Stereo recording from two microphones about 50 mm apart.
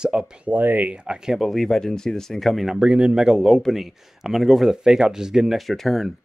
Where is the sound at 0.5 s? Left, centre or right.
Right.